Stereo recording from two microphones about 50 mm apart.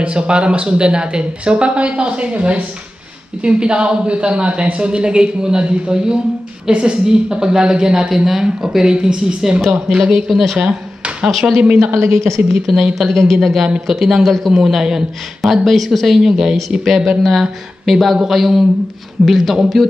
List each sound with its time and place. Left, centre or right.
0.0 s a woman's voice: centre
9.6 s speech: centre
9.9 s speech: centre
10.7 s a sound: right
11.2 s speech: centre
11.9 s a woman's voice: right
12.7 s speech: centre
14.7 s a woman's voice: centre
15.4 s speech: centre